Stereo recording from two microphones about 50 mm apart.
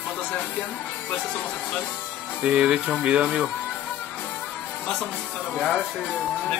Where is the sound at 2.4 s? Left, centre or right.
Centre.